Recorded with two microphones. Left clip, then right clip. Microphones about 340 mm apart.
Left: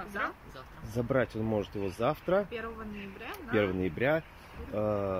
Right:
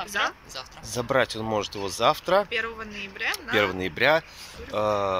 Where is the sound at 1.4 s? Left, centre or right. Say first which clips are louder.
Right 5 dB; right.